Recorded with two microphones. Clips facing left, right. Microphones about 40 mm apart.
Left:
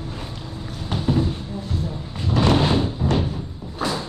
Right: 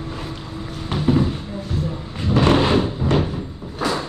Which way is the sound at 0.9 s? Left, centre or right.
Right.